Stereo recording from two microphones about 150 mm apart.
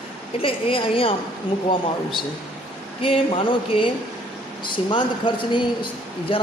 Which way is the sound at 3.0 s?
35° left (ahead or behind).